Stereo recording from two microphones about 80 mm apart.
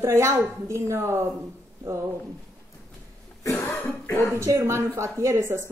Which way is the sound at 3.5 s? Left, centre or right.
Left.